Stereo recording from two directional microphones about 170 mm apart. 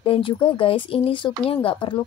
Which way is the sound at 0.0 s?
30° left (ahead or behind).